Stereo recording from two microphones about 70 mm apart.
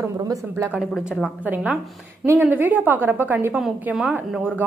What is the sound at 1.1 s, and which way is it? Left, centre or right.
Speech, centre.